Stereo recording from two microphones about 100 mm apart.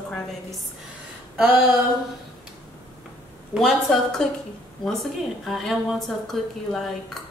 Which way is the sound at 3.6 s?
Centre (ahead or behind).